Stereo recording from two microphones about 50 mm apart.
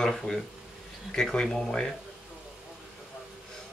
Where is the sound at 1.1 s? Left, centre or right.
Centre.